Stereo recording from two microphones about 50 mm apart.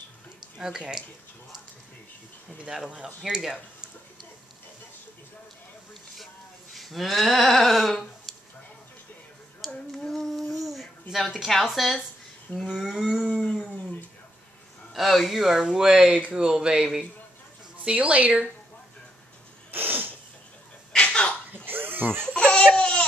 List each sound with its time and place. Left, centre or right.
0.6 s speech: centre
2.6 s speech: centre
6.7 s speech: centre
9.8 s a sound: centre
11.3 s speech: centre
13.4 s dog: centre
15.0 s speech: centre
17.8 s a woman's voice: right
19.7 s sneeze: right
20.9 s a sound: centre
21.6 s a sound: right
22.2 s laughter: centre